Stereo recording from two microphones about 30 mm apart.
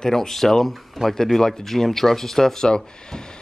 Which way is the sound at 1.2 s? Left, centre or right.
Centre.